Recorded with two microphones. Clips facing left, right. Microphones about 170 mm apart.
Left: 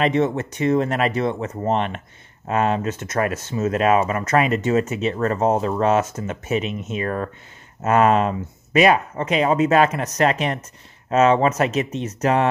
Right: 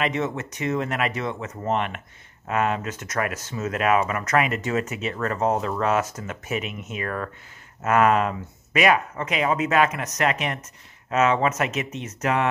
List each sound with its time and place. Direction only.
0.0 s speech: 30° left (ahead or behind)